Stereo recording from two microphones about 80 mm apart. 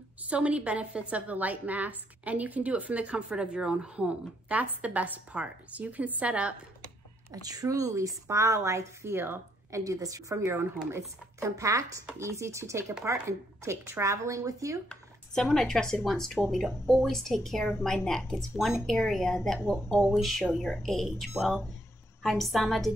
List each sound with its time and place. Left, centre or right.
0.2 s a woman's voice: centre
7.4 s a woman's voice: right
9.7 s a woman's voice: right
10.3 s a woman's voice: right
15.4 s speech: centre